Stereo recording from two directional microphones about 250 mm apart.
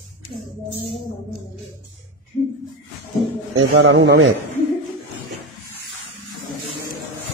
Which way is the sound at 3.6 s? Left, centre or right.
Right.